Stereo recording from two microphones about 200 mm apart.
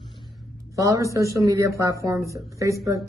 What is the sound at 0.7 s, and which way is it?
A woman's voice, 15° right (ahead or behind).